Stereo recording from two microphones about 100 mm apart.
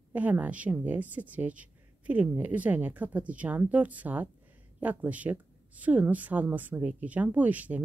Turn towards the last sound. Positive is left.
turn(degrees=-15)  # may be behind; listen again after turning